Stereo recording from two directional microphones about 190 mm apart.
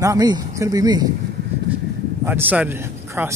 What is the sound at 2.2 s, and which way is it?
Speech, 10° right (ahead or behind).